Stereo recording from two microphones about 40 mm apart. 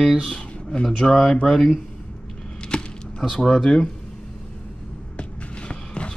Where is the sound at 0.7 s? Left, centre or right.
Centre.